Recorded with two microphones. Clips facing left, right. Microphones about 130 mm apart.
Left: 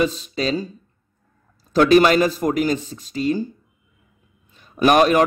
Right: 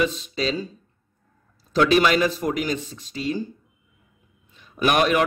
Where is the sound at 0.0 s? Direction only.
40° left (ahead or behind).